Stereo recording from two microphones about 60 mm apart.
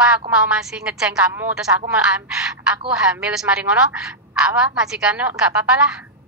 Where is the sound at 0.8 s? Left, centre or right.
Centre.